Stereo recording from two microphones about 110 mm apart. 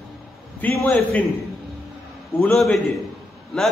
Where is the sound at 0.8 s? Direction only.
15° left (ahead or behind).